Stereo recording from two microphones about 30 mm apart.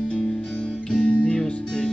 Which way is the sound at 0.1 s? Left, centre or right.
Left.